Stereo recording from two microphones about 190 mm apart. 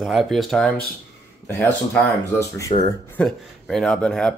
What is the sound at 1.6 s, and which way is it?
Speech, 10° left (ahead or behind).